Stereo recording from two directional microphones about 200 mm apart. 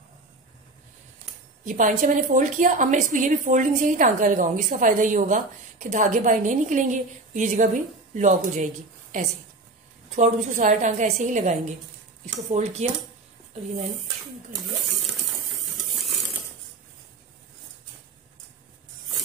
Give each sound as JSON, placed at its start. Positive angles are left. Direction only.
{"t": 1.6, "sound": "a woman's voice", "side_deg": -40}
{"t": 10.1, "sound": "a woman's voice", "side_deg": -40}
{"t": 12.5, "sound": "a woman's voice", "side_deg": -35}